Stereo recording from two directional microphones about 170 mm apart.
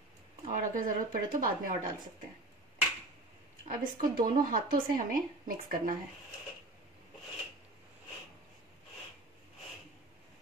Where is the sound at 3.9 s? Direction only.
55° right (ahead or behind).